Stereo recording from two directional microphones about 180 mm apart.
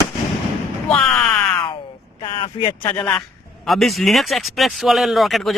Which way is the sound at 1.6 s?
25° left (ahead or behind).